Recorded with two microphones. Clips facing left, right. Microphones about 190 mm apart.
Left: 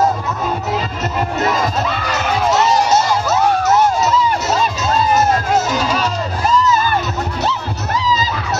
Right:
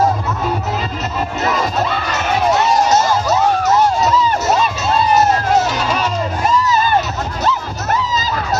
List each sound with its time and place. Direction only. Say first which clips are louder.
2.9 s music: right 1 dB; 5° left (ahead or behind)
7.9 s crowd: even; 50° right (ahead or behind)